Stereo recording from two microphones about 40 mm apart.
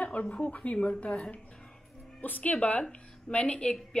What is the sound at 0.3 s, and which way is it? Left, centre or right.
A woman's voice, left.